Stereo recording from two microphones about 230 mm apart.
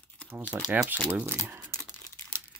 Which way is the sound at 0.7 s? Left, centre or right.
Centre.